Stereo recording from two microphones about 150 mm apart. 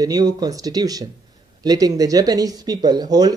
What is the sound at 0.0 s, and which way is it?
Speech, 25° right (ahead or behind).